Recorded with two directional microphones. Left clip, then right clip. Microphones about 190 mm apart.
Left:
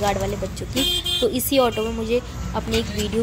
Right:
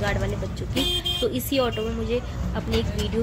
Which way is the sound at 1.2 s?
25° left (ahead or behind).